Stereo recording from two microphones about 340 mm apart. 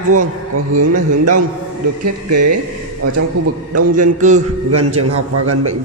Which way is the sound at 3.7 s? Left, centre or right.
Right.